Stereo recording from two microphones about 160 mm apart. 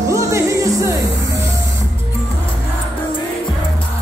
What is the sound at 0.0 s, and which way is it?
Music, 20° right (ahead or behind).